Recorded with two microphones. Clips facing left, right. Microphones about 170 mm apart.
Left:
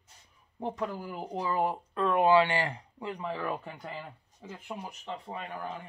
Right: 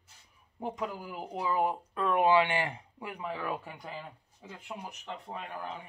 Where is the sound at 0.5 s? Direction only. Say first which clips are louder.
Left 2 dB; 10° right (ahead or behind).